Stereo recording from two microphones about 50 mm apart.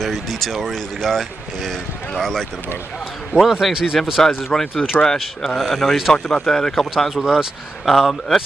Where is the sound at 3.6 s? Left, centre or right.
Centre.